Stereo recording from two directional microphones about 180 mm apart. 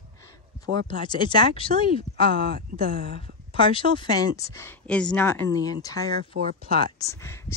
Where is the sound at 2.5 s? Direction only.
55° right (ahead or behind).